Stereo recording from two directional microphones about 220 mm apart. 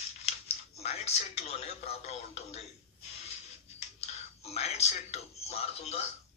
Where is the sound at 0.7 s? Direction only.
30° left (ahead or behind).